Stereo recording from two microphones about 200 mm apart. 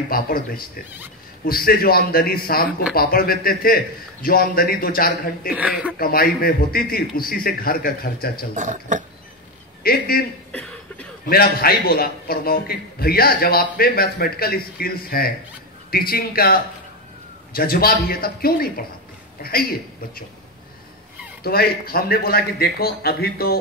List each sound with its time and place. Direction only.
0.1 s a man's voice: 45° left (ahead or behind)
5.5 s speech: 5° right (ahead or behind)
5.9 s a man's voice: 45° left (ahead or behind)
8.5 s speech: 40° right (ahead or behind)
9.8 s a man's voice: 50° left (ahead or behind)
10.5 s a sound: 5° left (ahead or behind)
11.2 s a man's voice: 50° left (ahead or behind)
21.4 s a man's voice: 50° left (ahead or behind)